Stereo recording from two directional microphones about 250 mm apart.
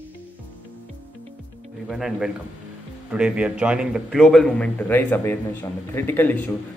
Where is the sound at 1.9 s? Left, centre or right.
Centre.